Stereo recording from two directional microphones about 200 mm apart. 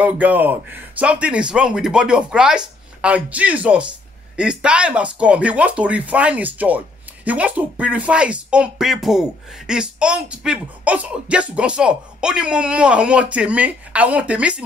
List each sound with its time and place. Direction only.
0.0 s speech: 5° right (ahead or behind)